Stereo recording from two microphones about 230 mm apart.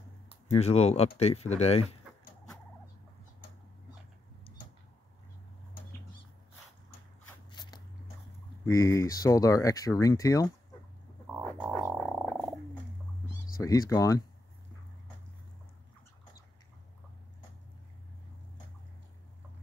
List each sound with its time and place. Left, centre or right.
0.5 s speech: left
7.5 s biting: centre
8.6 s speech: centre
11.4 s music: centre
11.8 s frog: centre
13.6 s speech: centre